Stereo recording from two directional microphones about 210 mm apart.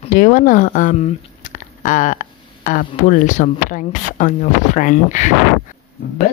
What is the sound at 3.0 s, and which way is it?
Speech, 35° left (ahead or behind).